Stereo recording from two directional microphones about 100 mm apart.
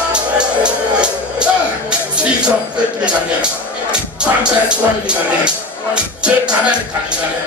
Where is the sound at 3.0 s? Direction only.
10° right (ahead or behind).